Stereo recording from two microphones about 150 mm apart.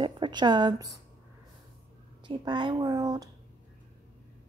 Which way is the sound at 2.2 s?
30° right (ahead or behind).